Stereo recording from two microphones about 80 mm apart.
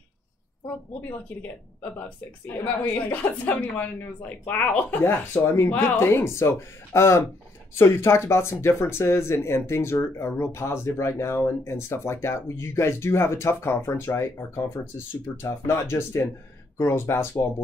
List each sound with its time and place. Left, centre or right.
1.8 s a woman's voice: centre
5.0 s speech: left